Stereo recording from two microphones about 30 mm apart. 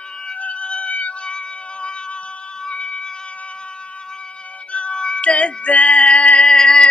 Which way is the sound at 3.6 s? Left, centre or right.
Left.